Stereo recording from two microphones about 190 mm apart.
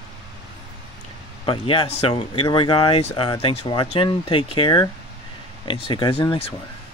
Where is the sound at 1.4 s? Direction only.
30° left (ahead or behind).